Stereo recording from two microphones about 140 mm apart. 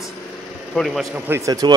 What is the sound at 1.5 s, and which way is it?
Speech, 30° right (ahead or behind).